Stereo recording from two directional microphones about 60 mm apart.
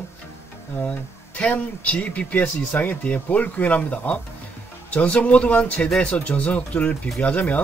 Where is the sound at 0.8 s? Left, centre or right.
Centre.